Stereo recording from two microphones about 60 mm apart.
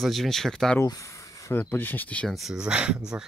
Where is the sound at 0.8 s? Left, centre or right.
Left.